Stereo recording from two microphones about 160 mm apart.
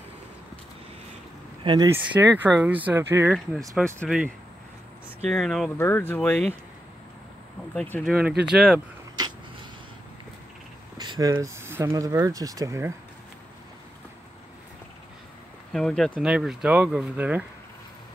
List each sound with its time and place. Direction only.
1.6 s speech: 30° right (ahead or behind)
1.9 s speech: 10° right (ahead or behind)
3.3 s speech: centre (ahead or behind)
5.3 s speech: 5° left (ahead or behind)
5.8 s speech: 15° left (ahead or behind)
7.7 s speech: 5° left (ahead or behind)
8.1 s speech: 5° right (ahead or behind)
9.1 s a sound: 25° right (ahead or behind)
11.0 s a sound: 25° right (ahead or behind)
11.3 s speech: 15° right (ahead or behind)
15.7 s speech: centre (ahead or behind)